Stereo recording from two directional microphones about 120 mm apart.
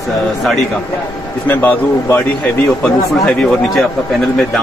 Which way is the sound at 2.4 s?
5° left (ahead or behind).